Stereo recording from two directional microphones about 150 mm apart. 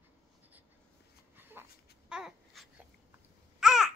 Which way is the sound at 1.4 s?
15° right (ahead or behind).